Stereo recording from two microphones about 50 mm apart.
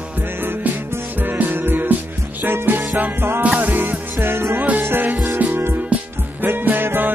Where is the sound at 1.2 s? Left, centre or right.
Right.